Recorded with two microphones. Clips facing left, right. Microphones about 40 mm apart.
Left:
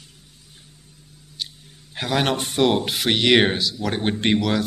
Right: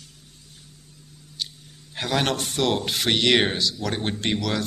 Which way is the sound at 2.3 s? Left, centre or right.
Left.